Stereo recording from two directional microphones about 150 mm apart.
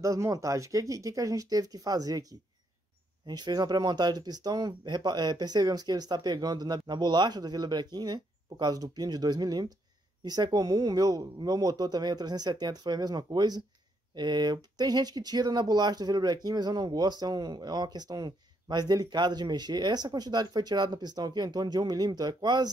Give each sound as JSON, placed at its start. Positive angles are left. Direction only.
{"t": 0.0, "sound": "speech", "side_deg": -20}